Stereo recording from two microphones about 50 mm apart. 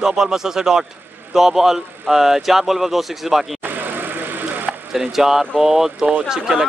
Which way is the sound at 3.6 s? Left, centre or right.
Right.